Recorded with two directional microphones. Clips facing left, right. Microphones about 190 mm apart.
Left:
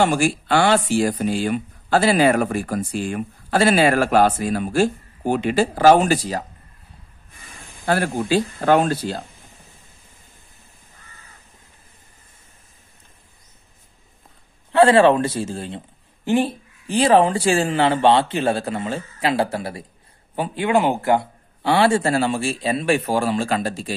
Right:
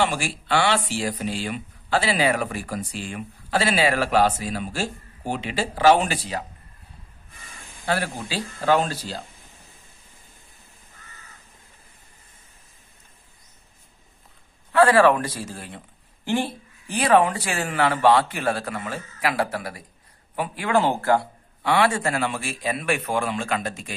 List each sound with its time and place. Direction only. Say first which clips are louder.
0.0 s speech: left 6 dB; 45° left (ahead or behind)
7.8 s speech: left 5 dB; 50° left (ahead or behind)
14.7 s speech: left 3 dB; 25° left (ahead or behind)
21.6 s a man's voice: left 4 dB; 30° left (ahead or behind)